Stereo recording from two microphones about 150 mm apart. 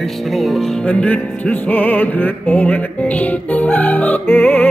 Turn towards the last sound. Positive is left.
turn(degrees=10)  # may be behind; listen again after turning